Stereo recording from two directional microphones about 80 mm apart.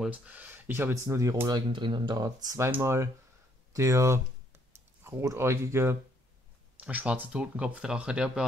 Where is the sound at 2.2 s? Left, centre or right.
Right.